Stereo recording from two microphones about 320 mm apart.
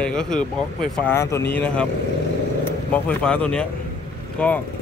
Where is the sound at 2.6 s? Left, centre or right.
Centre.